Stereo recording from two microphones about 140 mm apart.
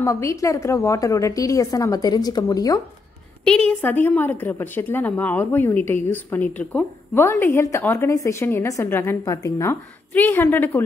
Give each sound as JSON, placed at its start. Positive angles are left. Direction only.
{"t": 0.0, "sound": "a woman's voice", "side_deg": 20}
{"t": 3.4, "sound": "a woman's voice", "side_deg": 5}